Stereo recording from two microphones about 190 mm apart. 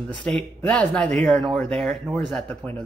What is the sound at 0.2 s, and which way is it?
Speech, 5° left (ahead or behind).